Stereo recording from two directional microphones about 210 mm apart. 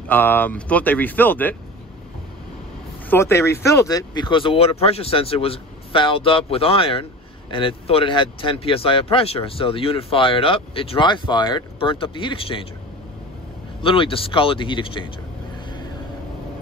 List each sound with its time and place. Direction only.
0.1 s speech: 10° left (ahead or behind)
3.1 s speech: 10° left (ahead or behind)
13.8 s speech: 25° left (ahead or behind)